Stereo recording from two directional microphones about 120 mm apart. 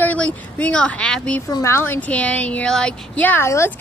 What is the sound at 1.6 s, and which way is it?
Speech, 20° left (ahead or behind).